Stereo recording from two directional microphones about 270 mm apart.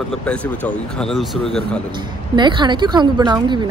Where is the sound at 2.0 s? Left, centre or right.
Centre.